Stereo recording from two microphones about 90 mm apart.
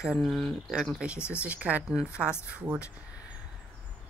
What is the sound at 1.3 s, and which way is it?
Speech, 15° right (ahead or behind).